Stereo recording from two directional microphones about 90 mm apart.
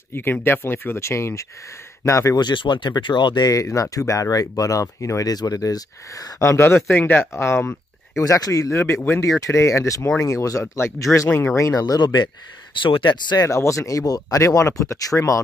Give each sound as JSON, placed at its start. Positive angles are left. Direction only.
{"t": 0.1, "sound": "speech", "side_deg": 25}
{"t": 2.4, "sound": "speech", "side_deg": 60}
{"t": 6.4, "sound": "speech", "side_deg": 30}
{"t": 8.2, "sound": "speech", "side_deg": 40}
{"t": 11.8, "sound": "speech", "side_deg": 55}
{"t": 12.7, "sound": "speech", "side_deg": 70}
{"t": 13.4, "sound": "speech", "side_deg": 35}